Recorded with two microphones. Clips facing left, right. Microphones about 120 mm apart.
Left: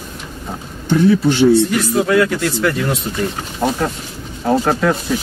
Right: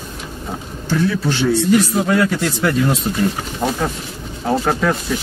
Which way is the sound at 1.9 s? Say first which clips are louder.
Left 2 dB; 15° right (ahead or behind).